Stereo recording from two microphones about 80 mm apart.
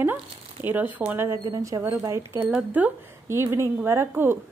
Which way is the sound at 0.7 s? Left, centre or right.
Right.